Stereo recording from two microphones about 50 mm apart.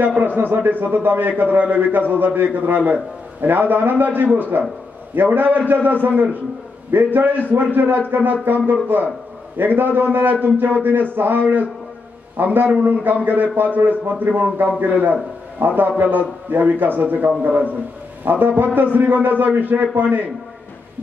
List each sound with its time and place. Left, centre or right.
0.4 s a man's voice: right